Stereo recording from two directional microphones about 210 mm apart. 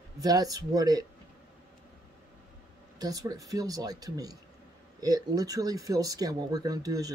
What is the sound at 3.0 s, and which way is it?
Speech, 20° right (ahead or behind).